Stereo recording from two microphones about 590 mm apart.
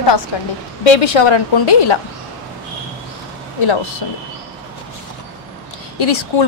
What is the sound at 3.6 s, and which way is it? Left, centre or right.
Speech, left.